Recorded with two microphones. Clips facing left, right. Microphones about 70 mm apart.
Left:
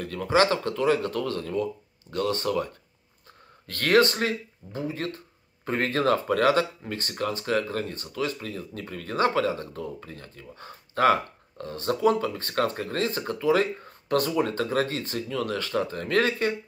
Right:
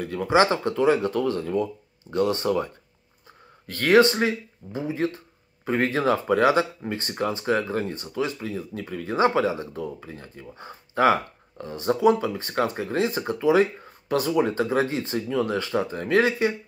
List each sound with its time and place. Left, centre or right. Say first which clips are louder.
0.0 s speech: right 2 dB; centre